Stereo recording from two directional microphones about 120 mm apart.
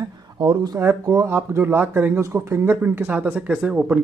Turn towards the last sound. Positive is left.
turn(degrees=-10)  # may be behind; listen again after turning